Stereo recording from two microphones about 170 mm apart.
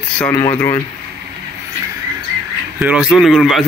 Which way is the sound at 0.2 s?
20° left (ahead or behind).